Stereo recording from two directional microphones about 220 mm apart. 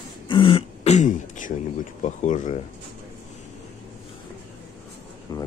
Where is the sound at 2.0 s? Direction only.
35° left (ahead or behind).